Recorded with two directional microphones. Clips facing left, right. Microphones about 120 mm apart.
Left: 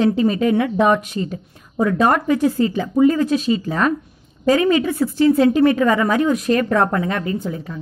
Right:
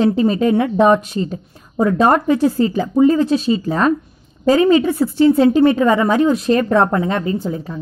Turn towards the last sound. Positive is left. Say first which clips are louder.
# right 3 dB
turn(degrees=-30)  # may be behind; listen again after turning